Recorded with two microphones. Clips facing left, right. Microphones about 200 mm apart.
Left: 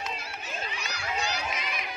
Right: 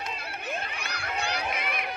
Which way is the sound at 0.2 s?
60° right (ahead or behind).